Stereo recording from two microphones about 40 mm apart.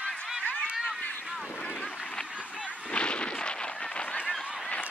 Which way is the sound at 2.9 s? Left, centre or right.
Left.